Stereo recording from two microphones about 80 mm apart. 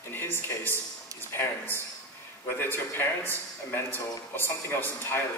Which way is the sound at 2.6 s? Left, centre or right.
Left.